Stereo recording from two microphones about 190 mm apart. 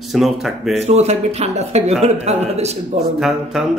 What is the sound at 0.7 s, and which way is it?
Speech, 35° right (ahead or behind).